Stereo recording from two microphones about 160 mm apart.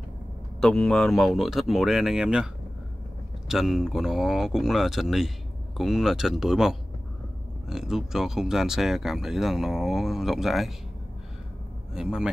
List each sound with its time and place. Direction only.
0.6 s speech: 5° left (ahead or behind)
11.9 s speech: 5° right (ahead or behind)